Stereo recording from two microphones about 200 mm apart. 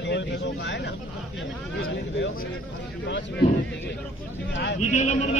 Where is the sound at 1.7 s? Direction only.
80° left.